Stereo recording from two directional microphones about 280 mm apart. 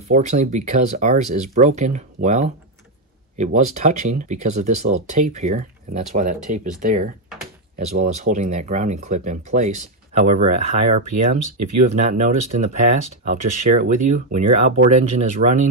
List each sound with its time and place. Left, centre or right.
0.1 s speech: right